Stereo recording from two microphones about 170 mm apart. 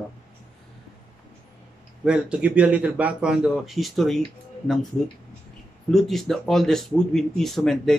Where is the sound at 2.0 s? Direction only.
5° right (ahead or behind).